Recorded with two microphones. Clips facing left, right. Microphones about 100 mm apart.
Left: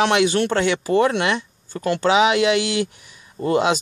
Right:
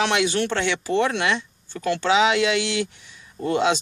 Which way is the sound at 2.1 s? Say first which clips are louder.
Left 2 dB; 15° left (ahead or behind).